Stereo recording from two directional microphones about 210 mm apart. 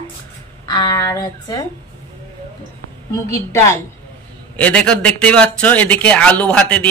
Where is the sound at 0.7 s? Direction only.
20° left (ahead or behind).